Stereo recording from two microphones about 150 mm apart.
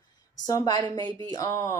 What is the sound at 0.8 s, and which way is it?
Speech, 30° right (ahead or behind).